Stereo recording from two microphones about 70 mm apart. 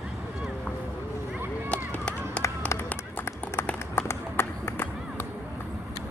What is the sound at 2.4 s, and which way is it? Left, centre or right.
Run, left.